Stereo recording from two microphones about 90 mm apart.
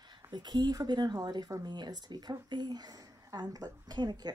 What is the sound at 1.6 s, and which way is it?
Speech, 55° right (ahead or behind).